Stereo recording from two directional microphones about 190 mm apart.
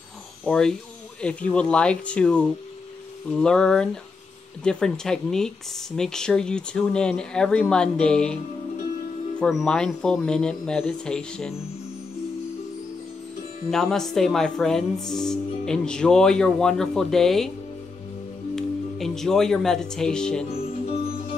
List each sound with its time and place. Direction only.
0.5 s speech: 5° left (ahead or behind)
9.4 s speech: centre (ahead or behind)
13.7 s speech: centre (ahead or behind)
18.5 s speech: centre (ahead or behind)
20.8 s music: 30° left (ahead or behind)